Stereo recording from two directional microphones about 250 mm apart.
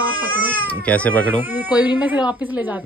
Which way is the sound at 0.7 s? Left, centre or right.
Centre.